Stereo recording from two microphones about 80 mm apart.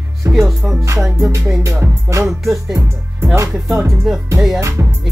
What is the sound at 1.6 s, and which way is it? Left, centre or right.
Music, right.